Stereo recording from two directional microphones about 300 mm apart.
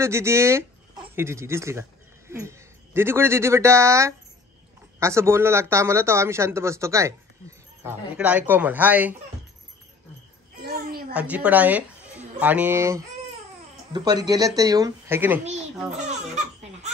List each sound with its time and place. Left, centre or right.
0.0 s speech: centre
10.5 s a sound: right
11.1 s a woman's voice: centre